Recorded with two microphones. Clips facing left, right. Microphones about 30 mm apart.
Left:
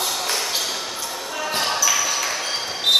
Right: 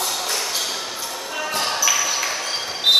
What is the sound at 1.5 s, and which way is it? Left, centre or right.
Basketball bounce, centre.